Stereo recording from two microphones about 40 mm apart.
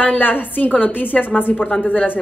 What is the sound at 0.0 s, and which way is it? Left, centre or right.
A woman's voice, left.